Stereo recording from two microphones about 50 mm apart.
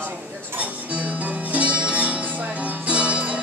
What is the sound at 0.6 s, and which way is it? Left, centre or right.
Music, right.